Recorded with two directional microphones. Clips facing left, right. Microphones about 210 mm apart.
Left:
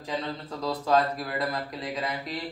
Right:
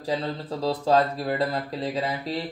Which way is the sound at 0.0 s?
35° right (ahead or behind).